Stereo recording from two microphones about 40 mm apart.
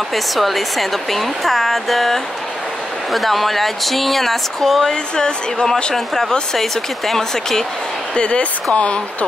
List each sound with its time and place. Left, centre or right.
0.1 s speech: centre
5.1 s speech: centre
5.9 s speech: centre
8.1 s speech: left